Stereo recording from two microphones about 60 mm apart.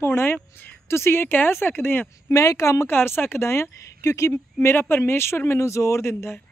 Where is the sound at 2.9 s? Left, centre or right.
Left.